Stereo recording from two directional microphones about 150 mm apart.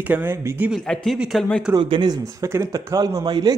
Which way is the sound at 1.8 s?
30° right (ahead or behind).